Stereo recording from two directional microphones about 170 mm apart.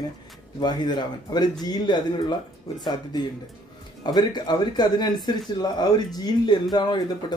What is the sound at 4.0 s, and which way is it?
Speech, 25° left (ahead or behind).